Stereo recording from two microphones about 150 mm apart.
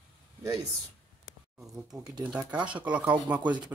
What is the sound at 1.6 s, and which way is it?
Speech, centre (ahead or behind).